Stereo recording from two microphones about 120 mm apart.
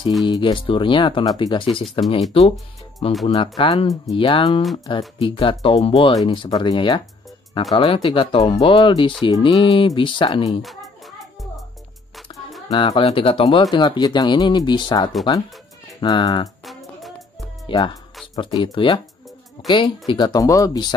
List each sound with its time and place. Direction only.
0.3 s speech: 45° left (ahead or behind)
2.0 s speech: 65° left (ahead or behind)
3.0 s speech: 50° left (ahead or behind)
3.5 s speech: 35° left (ahead or behind)
4.2 s speech: 45° left (ahead or behind)
10.6 s music: centre (ahead or behind)
12.7 s speech: 45° left (ahead or behind)
16.6 s music: centre (ahead or behind)
17.7 s speech: 45° left (ahead or behind)